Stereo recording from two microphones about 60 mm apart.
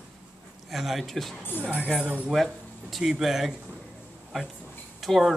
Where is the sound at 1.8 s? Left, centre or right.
Centre.